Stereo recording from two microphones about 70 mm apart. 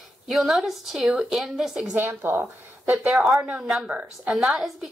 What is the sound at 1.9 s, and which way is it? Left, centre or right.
Speech, right.